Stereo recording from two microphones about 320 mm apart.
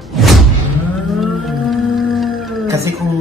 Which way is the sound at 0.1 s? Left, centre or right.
Centre.